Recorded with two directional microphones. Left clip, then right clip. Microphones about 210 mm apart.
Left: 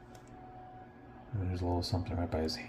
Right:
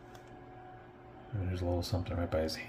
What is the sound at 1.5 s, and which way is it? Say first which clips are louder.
Speech: even; 5° right (ahead or behind).